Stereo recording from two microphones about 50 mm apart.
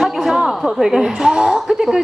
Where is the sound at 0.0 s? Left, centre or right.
Centre.